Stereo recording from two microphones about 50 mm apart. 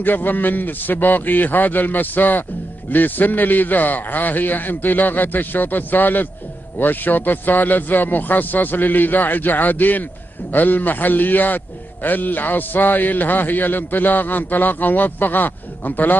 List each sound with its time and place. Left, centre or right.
0.0 s a man's voice: left